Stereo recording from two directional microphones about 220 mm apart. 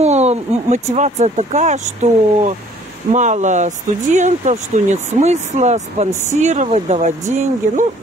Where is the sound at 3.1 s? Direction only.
35° right (ahead or behind).